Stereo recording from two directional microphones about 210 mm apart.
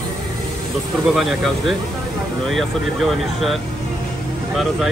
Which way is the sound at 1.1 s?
Centre (ahead or behind).